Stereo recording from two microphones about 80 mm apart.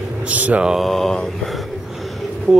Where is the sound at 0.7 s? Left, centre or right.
Centre.